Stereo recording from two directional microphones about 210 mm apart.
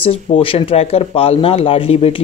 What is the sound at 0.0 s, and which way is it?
Speech, 25° left (ahead or behind).